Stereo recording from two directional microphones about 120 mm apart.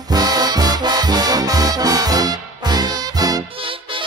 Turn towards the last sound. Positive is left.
turn(degrees=-35)  # may be behind; listen again after turning